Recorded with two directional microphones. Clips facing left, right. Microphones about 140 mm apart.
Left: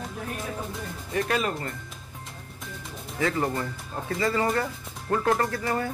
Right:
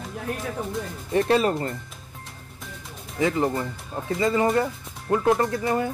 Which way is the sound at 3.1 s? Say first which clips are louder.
Right 3 dB; 20° right (ahead or behind).